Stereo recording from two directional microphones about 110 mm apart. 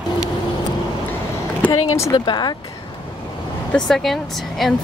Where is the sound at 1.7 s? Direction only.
30° left (ahead or behind).